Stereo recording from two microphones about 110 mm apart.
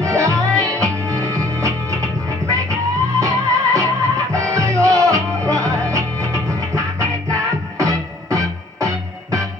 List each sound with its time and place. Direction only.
0.0 s music: 30° right (ahead or behind)